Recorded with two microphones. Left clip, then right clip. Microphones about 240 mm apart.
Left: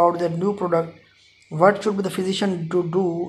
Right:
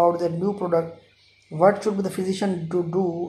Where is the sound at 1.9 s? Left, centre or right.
Centre.